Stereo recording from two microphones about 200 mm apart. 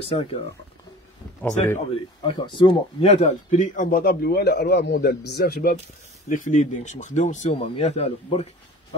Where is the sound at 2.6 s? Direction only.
25° left (ahead or behind); by 5.7 s 50° left (ahead or behind).